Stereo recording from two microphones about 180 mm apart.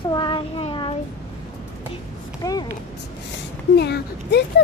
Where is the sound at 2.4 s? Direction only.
20° left (ahead or behind).